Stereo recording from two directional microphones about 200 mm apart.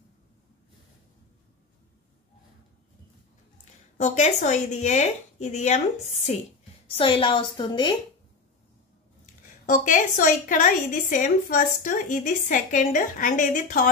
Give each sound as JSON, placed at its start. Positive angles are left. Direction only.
{"t": 4.0, "sound": "a woman's voice", "side_deg": 35}
{"t": 9.2, "sound": "a woman's voice", "side_deg": 40}